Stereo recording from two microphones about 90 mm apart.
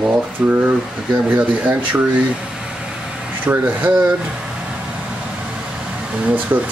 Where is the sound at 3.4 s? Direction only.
20° right (ahead or behind).